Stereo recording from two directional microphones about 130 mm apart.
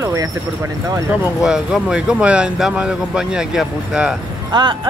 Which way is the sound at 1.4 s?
5° right (ahead or behind).